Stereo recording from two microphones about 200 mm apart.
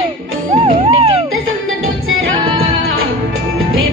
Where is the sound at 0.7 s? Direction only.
25° right (ahead or behind).